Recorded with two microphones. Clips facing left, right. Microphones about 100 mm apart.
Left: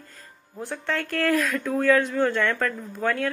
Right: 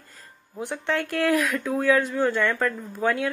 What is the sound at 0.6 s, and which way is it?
Speech, 15° right (ahead or behind).